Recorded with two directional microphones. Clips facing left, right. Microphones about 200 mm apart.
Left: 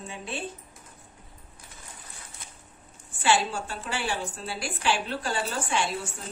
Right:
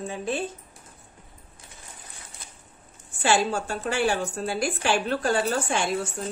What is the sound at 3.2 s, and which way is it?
A woman's voice, 45° right (ahead or behind).